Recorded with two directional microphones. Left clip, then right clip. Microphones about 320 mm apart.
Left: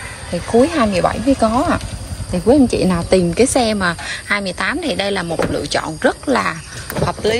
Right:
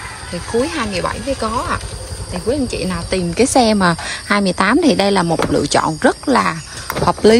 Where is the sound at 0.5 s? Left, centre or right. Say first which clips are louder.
Left 5 dB; centre.